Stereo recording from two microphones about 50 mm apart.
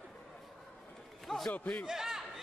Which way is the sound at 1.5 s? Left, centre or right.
Left.